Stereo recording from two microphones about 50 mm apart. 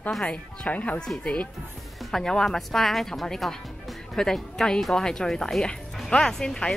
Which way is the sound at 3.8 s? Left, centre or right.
Centre.